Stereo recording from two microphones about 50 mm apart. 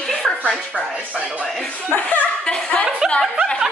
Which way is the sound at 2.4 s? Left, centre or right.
Centre.